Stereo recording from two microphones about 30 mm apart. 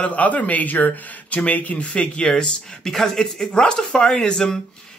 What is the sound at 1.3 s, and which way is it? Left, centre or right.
Speech, left.